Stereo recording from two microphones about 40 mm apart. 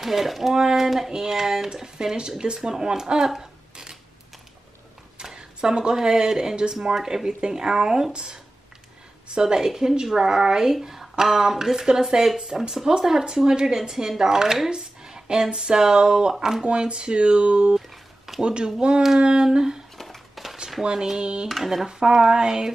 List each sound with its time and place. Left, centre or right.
0.0 s speech: centre
3.3 s a sound: centre
5.2 s speech: centre
16.6 s speech: right
17.7 s a sound: centre
18.4 s speech: right
20.0 s a sound: centre
20.8 s speech: centre
21.5 s speech: centre
22.2 s speech: centre